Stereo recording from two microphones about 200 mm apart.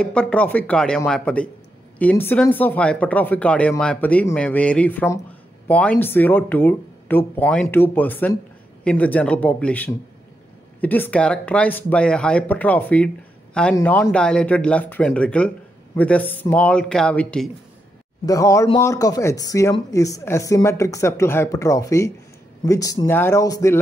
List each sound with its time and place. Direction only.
0.0 s speech: 5° left (ahead or behind)
18.2 s speech: 15° left (ahead or behind)